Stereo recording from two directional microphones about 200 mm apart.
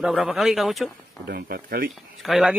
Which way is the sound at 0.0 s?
Centre (ahead or behind).